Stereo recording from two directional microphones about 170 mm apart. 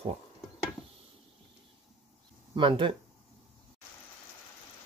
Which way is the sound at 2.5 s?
30° right (ahead or behind).